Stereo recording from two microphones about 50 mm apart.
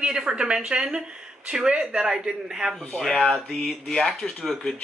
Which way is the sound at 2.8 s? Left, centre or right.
Centre.